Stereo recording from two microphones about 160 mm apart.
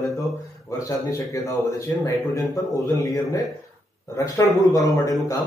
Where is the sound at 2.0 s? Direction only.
20° left (ahead or behind).